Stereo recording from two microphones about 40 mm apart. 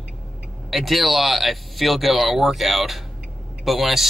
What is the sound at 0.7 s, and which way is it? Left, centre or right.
Speech, centre.